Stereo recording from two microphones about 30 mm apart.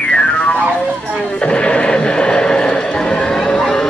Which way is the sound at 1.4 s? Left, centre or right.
Left.